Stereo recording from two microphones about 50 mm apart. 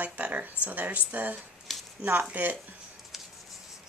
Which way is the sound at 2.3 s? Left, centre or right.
Right.